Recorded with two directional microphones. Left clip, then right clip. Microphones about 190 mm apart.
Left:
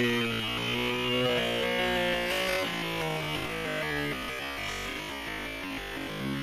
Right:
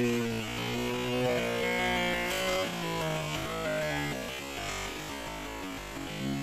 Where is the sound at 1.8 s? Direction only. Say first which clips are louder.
Left 2 dB; 45° right (ahead or behind).